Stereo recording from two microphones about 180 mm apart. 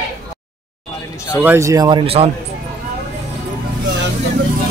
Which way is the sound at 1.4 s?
15° right (ahead or behind).